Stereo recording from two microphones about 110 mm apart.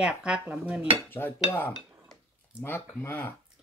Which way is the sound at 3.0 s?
20° left (ahead or behind).